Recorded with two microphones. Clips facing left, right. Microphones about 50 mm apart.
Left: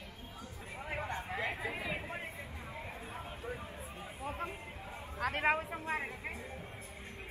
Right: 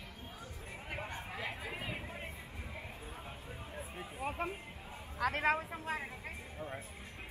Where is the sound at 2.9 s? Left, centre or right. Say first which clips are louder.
Left 3 dB; left.